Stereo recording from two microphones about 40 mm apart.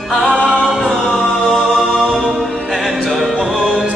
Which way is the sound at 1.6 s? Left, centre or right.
Centre.